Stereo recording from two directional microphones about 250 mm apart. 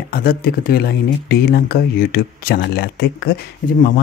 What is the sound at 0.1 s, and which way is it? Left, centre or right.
Speech, left.